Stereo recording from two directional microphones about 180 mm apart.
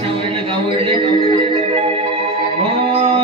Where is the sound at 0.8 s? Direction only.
30° right (ahead or behind).